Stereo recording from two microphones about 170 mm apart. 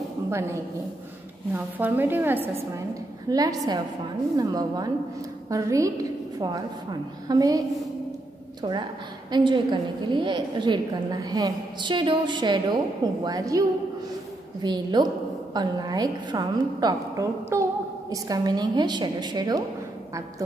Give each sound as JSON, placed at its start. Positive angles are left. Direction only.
{"t": 0.3, "sound": "a woman's voice", "side_deg": -15}
{"t": 9.3, "sound": "a woman's voice", "side_deg": -25}